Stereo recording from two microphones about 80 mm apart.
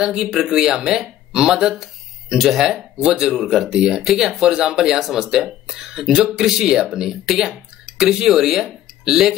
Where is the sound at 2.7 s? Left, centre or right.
Centre.